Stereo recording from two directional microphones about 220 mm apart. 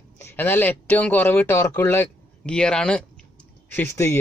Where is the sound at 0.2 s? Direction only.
10° left (ahead or behind).